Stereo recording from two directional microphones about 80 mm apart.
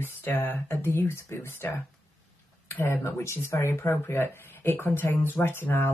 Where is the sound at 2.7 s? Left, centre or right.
Left.